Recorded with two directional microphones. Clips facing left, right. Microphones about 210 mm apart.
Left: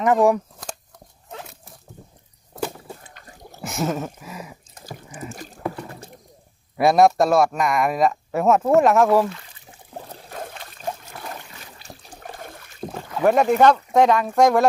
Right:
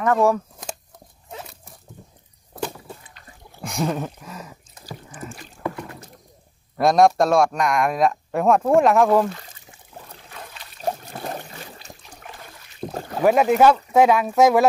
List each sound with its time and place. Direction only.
0.0 s speech: 15° left (ahead or behind)
1.3 s dog: centre (ahead or behind)
3.0 s a sound: 45° left (ahead or behind)
3.6 s speech: 5° left (ahead or behind)
5.3 s a sound: 35° left (ahead or behind)
6.8 s speech: 5° left (ahead or behind)
9.3 s pour: 40° right (ahead or behind)
10.3 s trickle: 50° left (ahead or behind)
10.8 s a sound: 35° right (ahead or behind)
12.2 s water: 45° left (ahead or behind)
13.2 s speech: 5° right (ahead or behind)